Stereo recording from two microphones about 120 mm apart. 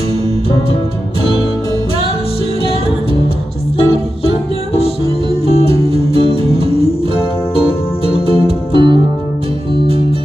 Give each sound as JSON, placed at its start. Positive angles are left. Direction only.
{"t": 3.7, "sound": "music", "side_deg": 50}
{"t": 6.1, "sound": "music", "side_deg": 50}